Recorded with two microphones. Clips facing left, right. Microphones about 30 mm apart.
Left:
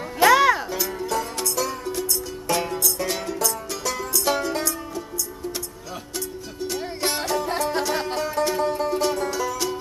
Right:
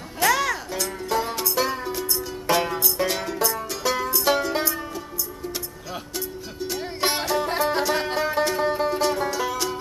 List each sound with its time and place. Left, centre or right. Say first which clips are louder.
0.2 s music: left 6 dB; centre
1.1 s music: right 4 dB; right
1.9 s music: even; centre
3.1 s music: right 1 dB; centre
3.3 s music: right 1 dB; right
6.1 s music: left 2 dB; centre
9.0 s music: right 1 dB; centre